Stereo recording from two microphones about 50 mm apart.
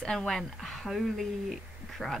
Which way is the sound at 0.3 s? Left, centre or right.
Centre.